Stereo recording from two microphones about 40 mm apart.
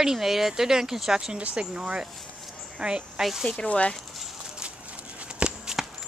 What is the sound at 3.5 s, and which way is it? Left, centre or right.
Speech, left.